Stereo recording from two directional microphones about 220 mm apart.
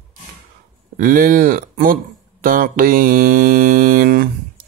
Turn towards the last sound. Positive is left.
turn(degrees=-40)  # may be behind; listen again after turning